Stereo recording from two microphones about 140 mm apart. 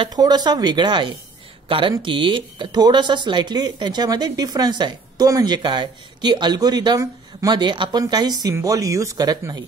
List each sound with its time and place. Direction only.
0.0 s speech: 30° right (ahead or behind)